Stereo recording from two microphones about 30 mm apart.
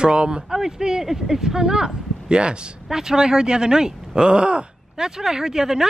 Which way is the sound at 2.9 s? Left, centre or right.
Centre.